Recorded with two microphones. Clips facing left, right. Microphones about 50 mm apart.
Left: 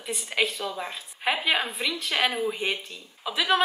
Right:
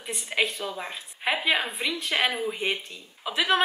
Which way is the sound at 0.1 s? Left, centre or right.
Centre.